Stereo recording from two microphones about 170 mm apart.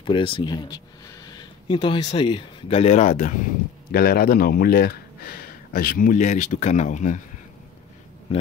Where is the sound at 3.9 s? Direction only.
65° left (ahead or behind); by 7.2 s 45° left (ahead or behind).